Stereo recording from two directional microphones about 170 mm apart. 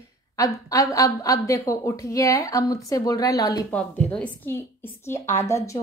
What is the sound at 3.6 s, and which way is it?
A woman's voice, 5° left (ahead or behind).